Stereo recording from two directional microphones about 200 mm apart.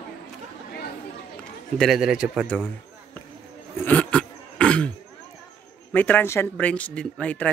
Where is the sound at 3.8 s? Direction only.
5° left (ahead or behind).